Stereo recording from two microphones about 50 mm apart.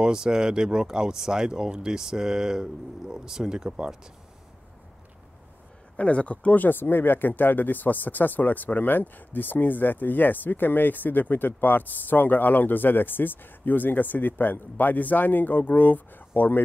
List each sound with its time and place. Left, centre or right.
0.0 s speech: centre
5.9 s speech: left